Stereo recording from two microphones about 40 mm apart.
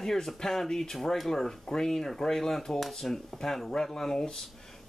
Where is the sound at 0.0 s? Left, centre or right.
Centre.